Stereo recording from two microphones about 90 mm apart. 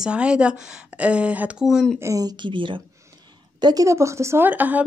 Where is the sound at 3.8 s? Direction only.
35° right (ahead or behind); by 4.9 s 20° right (ahead or behind).